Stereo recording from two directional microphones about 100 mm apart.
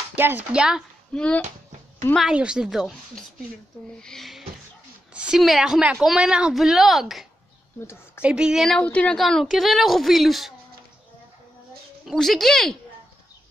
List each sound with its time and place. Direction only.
0.1 s speech: 20° right (ahead or behind)
0.5 s a woman's voice: 5° right (ahead or behind)
1.1 s speech: 10° left (ahead or behind)
2.1 s a woman's voice: 5° right (ahead or behind)
8.6 s speech: 10° left (ahead or behind)
9.2 s a woman's voice: centre (ahead or behind)
12.1 s a woman's voice: centre (ahead or behind)